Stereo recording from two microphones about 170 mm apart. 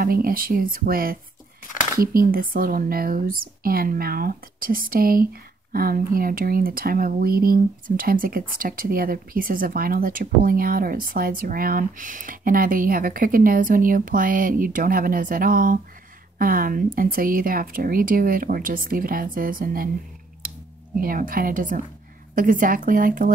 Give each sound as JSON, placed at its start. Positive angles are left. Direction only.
{"t": 0.0, "sound": "speech", "side_deg": -55}
{"t": 21.0, "sound": "speech", "side_deg": -55}